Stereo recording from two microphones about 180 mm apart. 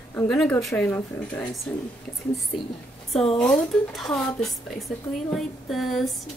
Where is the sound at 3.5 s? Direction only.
5° left (ahead or behind).